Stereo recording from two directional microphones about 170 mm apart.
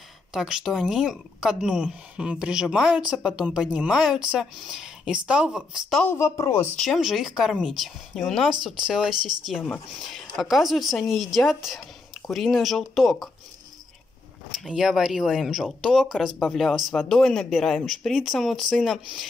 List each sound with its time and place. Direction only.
0.3 s speech: 5° right (ahead or behind)
6.0 s speech: 15° left (ahead or behind)
6.8 s speech: centre (ahead or behind)
14.6 s speech: centre (ahead or behind)